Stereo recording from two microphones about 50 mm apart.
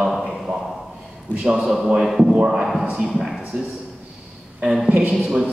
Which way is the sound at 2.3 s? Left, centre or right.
Right.